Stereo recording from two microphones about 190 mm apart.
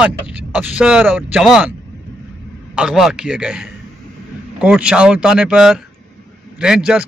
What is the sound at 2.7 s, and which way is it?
Speech, 5° right (ahead or behind).